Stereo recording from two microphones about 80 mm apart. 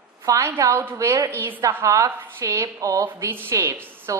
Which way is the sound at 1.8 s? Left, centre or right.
Right.